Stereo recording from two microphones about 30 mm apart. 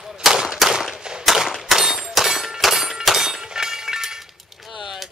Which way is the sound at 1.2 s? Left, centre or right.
Centre.